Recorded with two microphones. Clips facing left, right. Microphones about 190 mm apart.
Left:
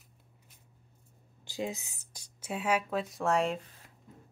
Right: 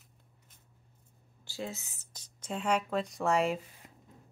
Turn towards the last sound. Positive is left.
turn(degrees=0)  # may be behind; listen again after turning